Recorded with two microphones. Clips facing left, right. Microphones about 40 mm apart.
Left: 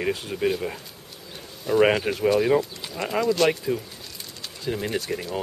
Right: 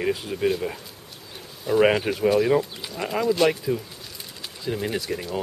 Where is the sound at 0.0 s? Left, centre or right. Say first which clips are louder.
Right 1 dB; centre.